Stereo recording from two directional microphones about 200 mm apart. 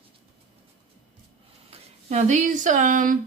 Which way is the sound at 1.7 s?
35° right (ahead or behind).